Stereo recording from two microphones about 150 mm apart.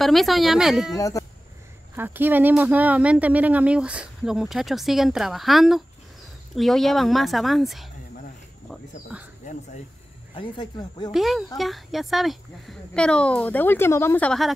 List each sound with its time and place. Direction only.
0.0 s a woman's voice: centre (ahead or behind)
0.9 s speech: 20° left (ahead or behind)
2.0 s a woman's voice: 15° right (ahead or behind)
9.5 s speech: 55° left (ahead or behind)
10.3 s speech: 35° left (ahead or behind)
11.1 s a woman's voice: centre (ahead or behind)